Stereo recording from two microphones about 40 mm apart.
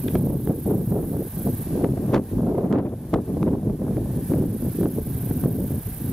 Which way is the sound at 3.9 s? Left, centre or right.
Centre.